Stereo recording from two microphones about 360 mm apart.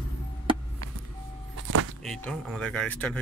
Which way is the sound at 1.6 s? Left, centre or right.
Right.